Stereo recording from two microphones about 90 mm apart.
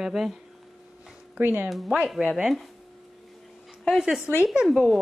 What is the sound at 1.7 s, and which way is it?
Speech, centre (ahead or behind).